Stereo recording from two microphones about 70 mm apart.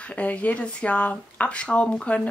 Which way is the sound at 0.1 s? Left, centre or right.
Centre.